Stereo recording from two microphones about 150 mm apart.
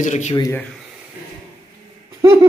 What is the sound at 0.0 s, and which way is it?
Speech, 50° left (ahead or behind).